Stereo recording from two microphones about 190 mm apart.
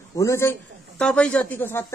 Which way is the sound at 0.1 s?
15° left (ahead or behind).